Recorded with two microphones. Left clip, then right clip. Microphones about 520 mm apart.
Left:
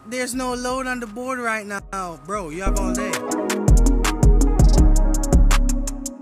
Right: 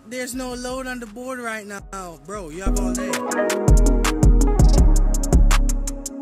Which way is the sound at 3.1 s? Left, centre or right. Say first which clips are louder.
Right 2 dB; centre.